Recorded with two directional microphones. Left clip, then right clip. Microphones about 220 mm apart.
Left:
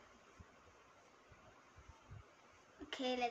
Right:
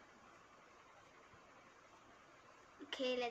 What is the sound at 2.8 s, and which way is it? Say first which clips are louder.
Speech: even; centre (ahead or behind).